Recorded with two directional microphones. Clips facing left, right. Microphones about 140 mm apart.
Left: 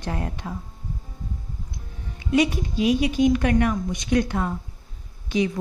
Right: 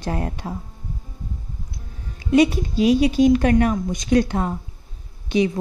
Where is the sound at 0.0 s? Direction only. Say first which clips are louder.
Right 3 dB; 35° right (ahead or behind).